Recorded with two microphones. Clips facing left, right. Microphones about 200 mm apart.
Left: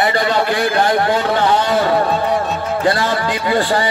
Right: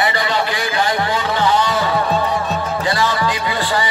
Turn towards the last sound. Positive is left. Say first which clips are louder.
# left 4 dB
turn(degrees=55)  # may be behind; listen again after turning